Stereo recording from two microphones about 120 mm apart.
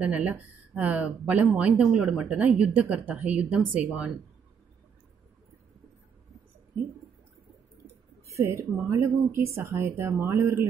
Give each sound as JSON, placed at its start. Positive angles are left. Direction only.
{"t": 0.0, "sound": "speech", "side_deg": -10}
{"t": 8.3, "sound": "speech", "side_deg": -20}